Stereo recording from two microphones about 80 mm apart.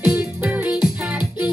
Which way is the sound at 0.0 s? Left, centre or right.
Centre.